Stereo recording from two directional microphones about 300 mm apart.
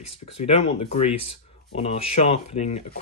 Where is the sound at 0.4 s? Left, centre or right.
Centre.